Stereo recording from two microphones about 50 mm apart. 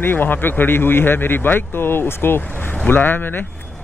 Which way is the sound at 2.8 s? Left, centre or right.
Left.